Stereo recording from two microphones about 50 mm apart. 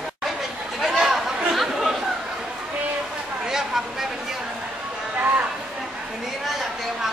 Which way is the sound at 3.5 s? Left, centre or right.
Centre.